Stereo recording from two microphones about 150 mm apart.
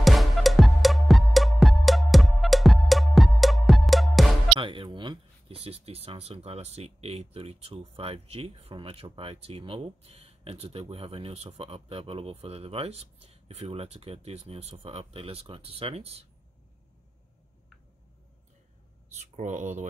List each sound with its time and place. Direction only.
0.0 s music: centre (ahead or behind)
4.6 s speech: 35° right (ahead or behind)
19.1 s speech: 50° right (ahead or behind)